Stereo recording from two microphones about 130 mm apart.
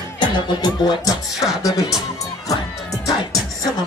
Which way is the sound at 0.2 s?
35° left (ahead or behind).